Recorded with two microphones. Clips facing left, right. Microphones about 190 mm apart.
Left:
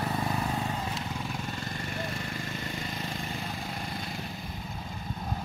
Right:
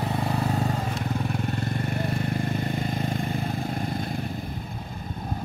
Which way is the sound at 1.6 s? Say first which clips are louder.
Right 7 dB; 60° right (ahead or behind).